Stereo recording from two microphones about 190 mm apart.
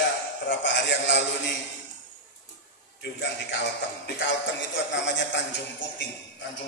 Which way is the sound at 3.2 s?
65° left (ahead or behind).